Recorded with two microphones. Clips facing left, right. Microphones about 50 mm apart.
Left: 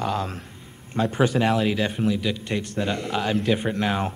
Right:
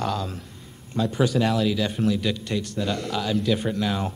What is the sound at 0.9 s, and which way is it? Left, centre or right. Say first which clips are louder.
Speech: left 1 dB; left.